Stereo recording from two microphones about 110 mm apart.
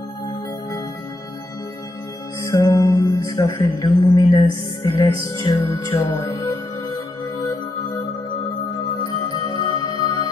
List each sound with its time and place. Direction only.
2.4 s music: 30° left (ahead or behind)
9.0 s music: 40° left (ahead or behind)